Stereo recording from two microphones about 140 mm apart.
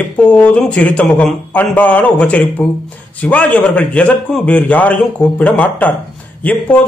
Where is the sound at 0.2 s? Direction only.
10° left (ahead or behind).